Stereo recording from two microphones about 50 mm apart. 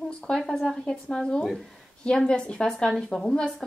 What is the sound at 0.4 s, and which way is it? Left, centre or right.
Speech, centre.